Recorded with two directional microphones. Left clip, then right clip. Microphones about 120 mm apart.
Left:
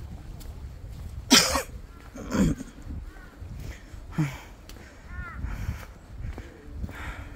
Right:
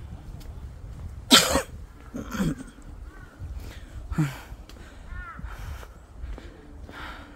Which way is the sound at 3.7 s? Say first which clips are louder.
Right 2 dB; 50° right (ahead or behind).